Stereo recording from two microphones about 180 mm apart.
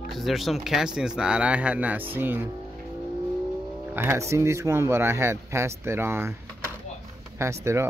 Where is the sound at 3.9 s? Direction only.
15° right (ahead or behind).